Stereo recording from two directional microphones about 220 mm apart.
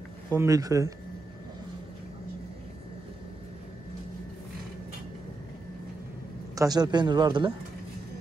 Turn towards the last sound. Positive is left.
turn(degrees=-20)  # may be behind; listen again after turning